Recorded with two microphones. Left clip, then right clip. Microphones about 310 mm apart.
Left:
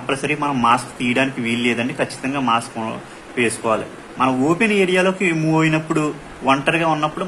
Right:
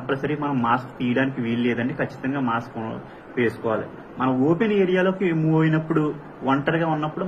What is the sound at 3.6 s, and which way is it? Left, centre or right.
A man's voice, left.